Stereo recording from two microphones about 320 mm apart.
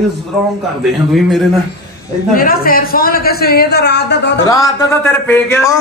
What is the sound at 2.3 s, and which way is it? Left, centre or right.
A man's voice, left.